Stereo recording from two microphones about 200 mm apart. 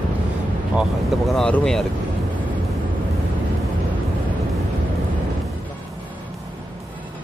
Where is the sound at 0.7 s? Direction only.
Centre (ahead or behind).